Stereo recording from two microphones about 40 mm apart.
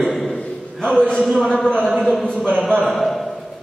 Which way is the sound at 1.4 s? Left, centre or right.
Centre.